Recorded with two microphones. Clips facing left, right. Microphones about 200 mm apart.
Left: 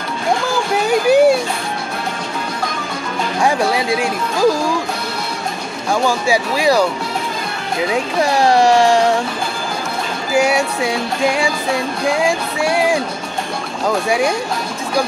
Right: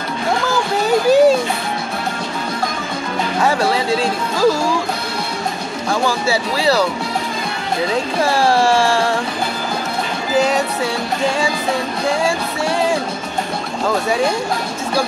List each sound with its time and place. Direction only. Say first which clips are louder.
0.8 s a sound: even; 15° left (ahead or behind)
3.3 s music: left 1 dB; 15° left (ahead or behind)
6.0 s music: left 3 dB; 15° left (ahead or behind)
7.9 s music: left 2 dB; 15° left (ahead or behind)
10.3 s music: left 1 dB; 10° left (ahead or behind)
14.0 s music: left 1 dB; 10° left (ahead or behind)